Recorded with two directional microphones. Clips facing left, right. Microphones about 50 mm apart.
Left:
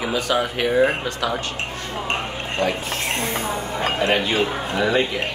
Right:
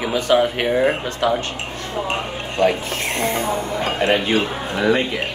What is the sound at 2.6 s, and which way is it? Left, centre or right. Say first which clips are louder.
Speech: right 5 dB; right.